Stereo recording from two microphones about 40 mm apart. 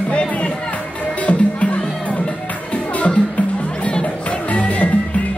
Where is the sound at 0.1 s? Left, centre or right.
Left.